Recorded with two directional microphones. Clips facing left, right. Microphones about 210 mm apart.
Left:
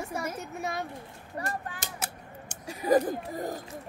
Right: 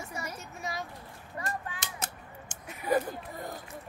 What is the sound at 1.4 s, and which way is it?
Speech, 35° left (ahead or behind).